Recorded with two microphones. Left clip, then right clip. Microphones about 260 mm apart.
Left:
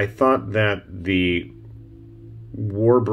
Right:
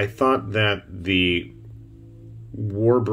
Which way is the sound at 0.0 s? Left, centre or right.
Centre.